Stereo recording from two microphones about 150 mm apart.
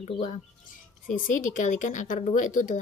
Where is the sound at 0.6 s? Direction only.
60° left (ahead or behind).